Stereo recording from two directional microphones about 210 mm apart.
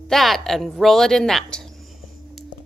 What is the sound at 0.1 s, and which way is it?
A woman's voice, centre (ahead or behind).